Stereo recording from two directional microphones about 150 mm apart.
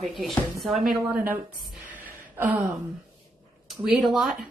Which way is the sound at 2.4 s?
15° right (ahead or behind).